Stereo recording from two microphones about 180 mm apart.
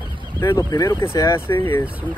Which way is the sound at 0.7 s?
20° left (ahead or behind).